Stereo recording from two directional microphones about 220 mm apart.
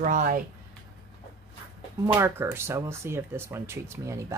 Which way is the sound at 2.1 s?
10° right (ahead or behind).